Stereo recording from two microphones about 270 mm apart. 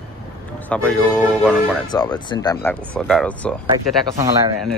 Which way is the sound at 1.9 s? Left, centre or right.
Centre.